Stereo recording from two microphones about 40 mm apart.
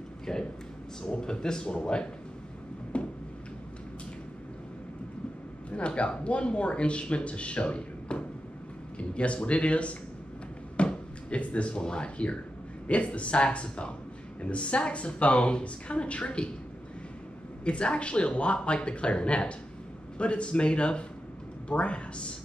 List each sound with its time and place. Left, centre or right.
0.3 s speech: centre
2.9 s tick-tock: left
5.7 s a man's voice: left
17.6 s speech: left